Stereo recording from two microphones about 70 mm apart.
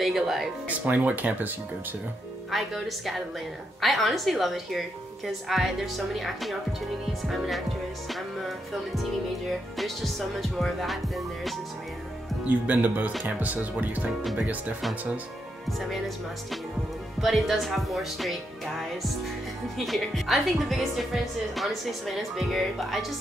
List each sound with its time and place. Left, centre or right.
0.0 s speech: centre
0.7 s speech: right
2.5 s speech: centre
12.4 s speech: right
17.2 s speech: centre
19.9 s speech: centre